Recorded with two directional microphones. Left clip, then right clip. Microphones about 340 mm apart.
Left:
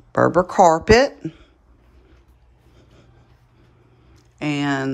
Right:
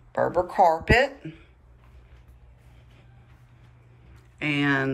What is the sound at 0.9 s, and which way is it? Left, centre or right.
Speech, centre.